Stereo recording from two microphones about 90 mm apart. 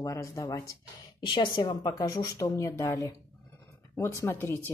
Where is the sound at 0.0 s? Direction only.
35° left (ahead or behind).